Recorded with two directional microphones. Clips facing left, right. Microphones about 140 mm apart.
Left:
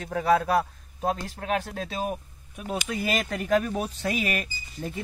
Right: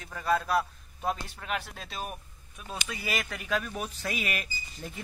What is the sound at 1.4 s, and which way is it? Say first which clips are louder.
Speech: left 7 dB; 45° left (ahead or behind).